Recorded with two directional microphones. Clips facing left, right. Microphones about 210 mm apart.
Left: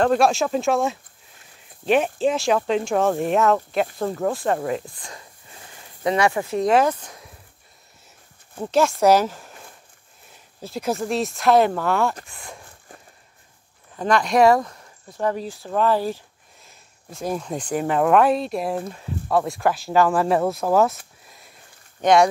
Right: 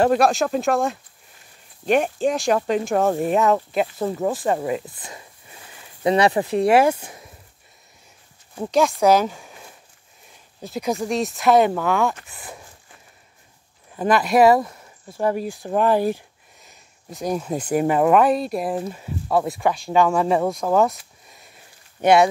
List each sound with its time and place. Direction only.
0.0 s speech: centre (ahead or behind)
4.8 s speech: 20° right (ahead or behind)
6.0 s speech: 30° right (ahead or behind)
6.4 s speech: 15° right (ahead or behind)
8.5 s speech: centre (ahead or behind)
13.9 s speech: 5° right (ahead or behind)
16.6 s speech: centre (ahead or behind)
21.3 s sniff: centre (ahead or behind)
22.0 s speech: 5° right (ahead or behind)